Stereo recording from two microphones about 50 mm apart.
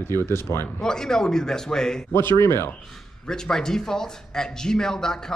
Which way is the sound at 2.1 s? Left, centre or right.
Left.